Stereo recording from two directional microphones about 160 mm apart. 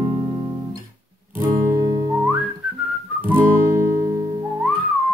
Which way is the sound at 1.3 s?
20° right (ahead or behind).